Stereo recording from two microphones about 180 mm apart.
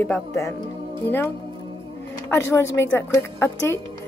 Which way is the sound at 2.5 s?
15° left (ahead or behind).